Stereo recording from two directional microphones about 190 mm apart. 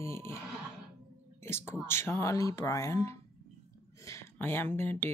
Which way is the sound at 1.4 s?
15° left (ahead or behind).